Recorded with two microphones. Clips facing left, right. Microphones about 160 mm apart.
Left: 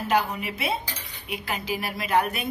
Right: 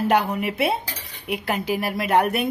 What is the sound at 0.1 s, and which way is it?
A woman's voice, 60° right (ahead or behind).